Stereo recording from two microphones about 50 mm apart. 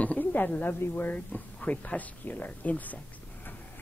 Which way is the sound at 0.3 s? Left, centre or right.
Left.